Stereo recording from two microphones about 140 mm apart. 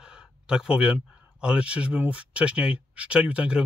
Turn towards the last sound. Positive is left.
turn(degrees=-5)  # may be behind; listen again after turning